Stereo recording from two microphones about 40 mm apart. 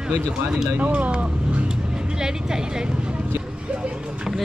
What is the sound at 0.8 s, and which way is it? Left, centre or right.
Speech, right.